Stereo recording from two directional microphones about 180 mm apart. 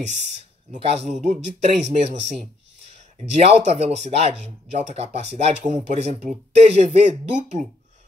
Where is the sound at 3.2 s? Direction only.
35° right (ahead or behind).